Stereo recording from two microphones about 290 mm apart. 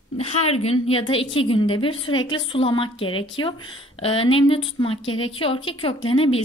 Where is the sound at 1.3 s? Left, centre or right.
Centre.